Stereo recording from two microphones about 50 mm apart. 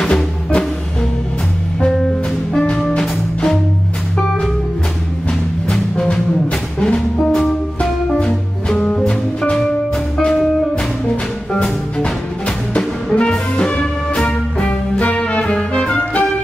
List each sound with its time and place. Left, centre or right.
0.0 s music: centre
1.8 s music: centre
5.7 s music: centre
9.4 s music: centre
11.5 s music: centre